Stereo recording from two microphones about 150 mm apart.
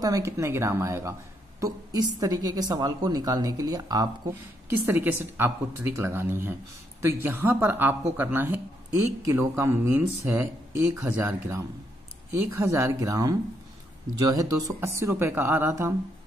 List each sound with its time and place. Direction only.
0.0 s a woman's voice: 20° right (ahead or behind)